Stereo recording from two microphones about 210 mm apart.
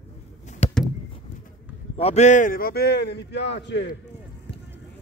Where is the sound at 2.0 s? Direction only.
30° left (ahead or behind); by 3.9 s 55° left (ahead or behind).